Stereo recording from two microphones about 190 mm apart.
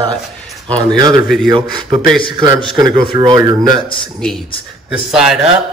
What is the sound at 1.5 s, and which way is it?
Speech, 20° right (ahead or behind).